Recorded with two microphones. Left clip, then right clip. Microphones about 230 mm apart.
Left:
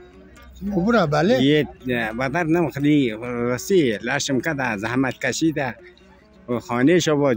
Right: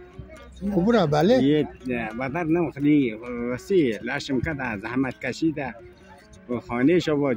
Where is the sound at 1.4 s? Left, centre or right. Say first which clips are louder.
Left 3 dB; left.